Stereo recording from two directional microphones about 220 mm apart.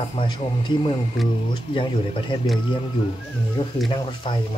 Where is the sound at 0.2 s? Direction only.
20° left (ahead or behind).